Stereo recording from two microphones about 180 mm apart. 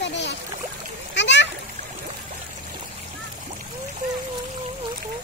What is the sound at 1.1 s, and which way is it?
Speech, 75° left (ahead or behind).